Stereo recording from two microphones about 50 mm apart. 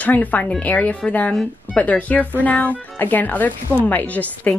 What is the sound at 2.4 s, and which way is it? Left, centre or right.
Speech, left.